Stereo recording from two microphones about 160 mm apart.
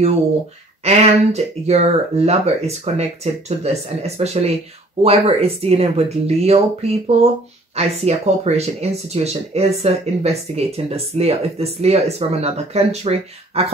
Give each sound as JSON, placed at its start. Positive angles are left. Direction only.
{"t": 0.8, "sound": "speech", "side_deg": -45}